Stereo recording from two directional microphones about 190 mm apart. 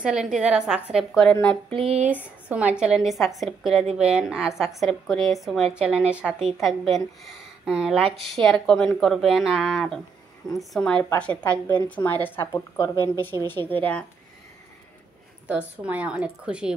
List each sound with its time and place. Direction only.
0.0 s a woman's voice: 5° right (ahead or behind)
1.8 s a sound: 30° right (ahead or behind)
2.4 s a woman's voice: 5° right (ahead or behind)
15.4 s a woman's voice: 5° right (ahead or behind)